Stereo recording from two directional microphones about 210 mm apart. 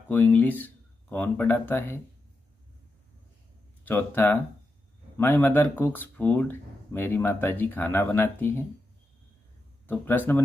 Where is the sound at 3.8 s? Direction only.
10° left (ahead or behind).